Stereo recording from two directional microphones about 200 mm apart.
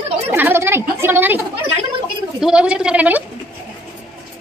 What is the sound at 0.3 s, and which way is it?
A woman's voice, 10° right (ahead or behind).